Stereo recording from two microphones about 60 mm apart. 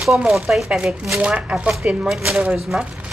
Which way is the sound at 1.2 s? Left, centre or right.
Right.